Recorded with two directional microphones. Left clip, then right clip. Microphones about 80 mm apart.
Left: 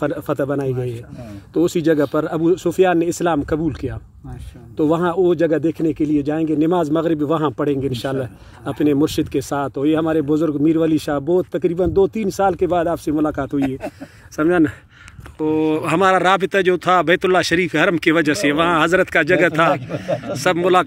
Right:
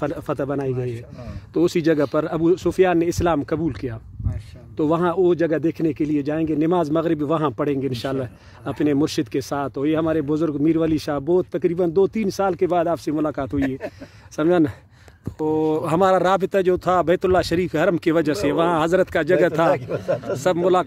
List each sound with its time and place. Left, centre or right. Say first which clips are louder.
0.0 s a man's voice: left 4 dB; right
1.5 s speech: left 2 dB; right
3.5 s a man's voice: left 3 dB; right
5.6 s a man's voice: left 3 dB; right
14.3 s speech: left 2 dB; right
15.5 s speech: left 2 dB; right
20.3 s speech: left 4 dB; right